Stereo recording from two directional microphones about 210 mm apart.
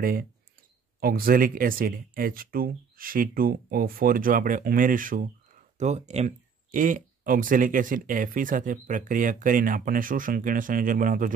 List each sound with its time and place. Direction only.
0.0 s speech: 45° right (ahead or behind)